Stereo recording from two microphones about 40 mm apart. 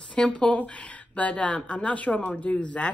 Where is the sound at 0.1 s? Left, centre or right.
Left.